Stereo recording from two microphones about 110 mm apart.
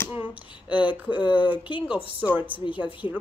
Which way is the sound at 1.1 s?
45° left (ahead or behind).